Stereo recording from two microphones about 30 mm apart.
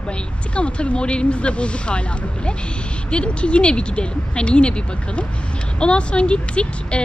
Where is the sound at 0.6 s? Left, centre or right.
Left.